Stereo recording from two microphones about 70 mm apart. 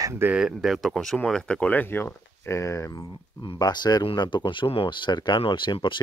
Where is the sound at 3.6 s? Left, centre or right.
Left.